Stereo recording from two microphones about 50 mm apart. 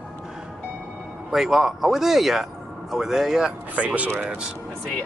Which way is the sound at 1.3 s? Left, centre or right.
Centre.